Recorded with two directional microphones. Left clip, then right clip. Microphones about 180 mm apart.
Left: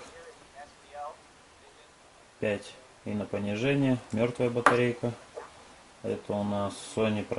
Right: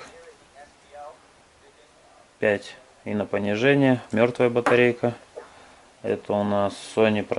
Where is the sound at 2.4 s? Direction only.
Centre (ahead or behind).